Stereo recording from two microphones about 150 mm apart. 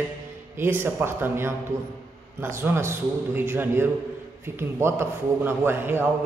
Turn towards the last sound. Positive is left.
turn(degrees=-15)  # may be behind; listen again after turning